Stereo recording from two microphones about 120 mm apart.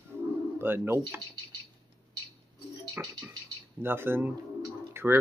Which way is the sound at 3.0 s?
20° right (ahead or behind).